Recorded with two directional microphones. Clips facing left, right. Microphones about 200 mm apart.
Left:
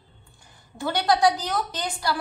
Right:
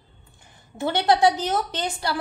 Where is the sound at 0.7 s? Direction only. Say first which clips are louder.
Right 2 dB; 25° right (ahead or behind).